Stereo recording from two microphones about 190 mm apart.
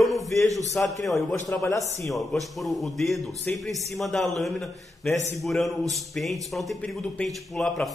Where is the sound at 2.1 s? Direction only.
Centre (ahead or behind).